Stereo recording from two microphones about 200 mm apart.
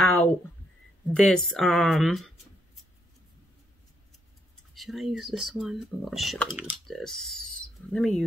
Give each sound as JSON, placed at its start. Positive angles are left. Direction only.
{"t": 0.0, "sound": "a sound", "side_deg": 10}
{"t": 1.1, "sound": "speech", "side_deg": 5}
{"t": 4.7, "sound": "speech", "side_deg": 0}
{"t": 7.5, "sound": "owl", "side_deg": 5}